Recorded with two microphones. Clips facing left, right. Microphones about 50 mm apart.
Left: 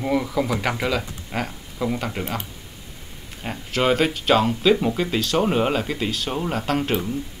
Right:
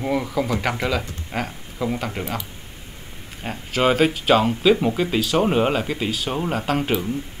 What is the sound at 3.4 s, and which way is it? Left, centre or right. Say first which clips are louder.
Speech: right 1 dB; centre.